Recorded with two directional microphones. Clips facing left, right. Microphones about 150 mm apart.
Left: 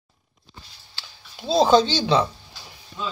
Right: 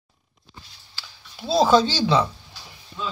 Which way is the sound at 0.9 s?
20° left (ahead or behind).